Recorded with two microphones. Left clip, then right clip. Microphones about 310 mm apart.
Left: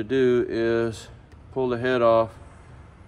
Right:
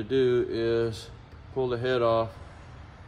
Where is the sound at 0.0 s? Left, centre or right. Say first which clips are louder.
Left 3 dB; left.